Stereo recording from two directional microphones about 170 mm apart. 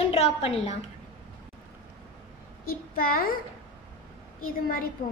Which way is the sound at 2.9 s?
55° left (ahead or behind).